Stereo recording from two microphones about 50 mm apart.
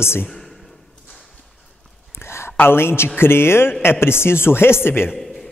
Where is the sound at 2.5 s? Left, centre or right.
Left.